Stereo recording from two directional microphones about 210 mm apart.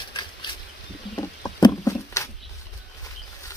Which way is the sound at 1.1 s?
15° left (ahead or behind).